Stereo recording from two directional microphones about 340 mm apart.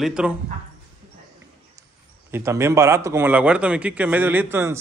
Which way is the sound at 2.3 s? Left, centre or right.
Centre.